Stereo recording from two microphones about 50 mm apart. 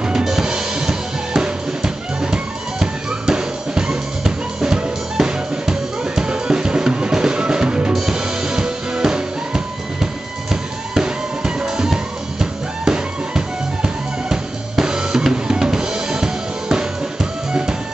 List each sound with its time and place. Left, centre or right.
0.2 s drum: centre
2.3 s music: centre
13.8 s drum: centre